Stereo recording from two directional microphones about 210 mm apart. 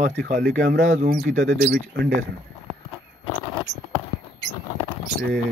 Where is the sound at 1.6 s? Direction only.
50° right (ahead or behind).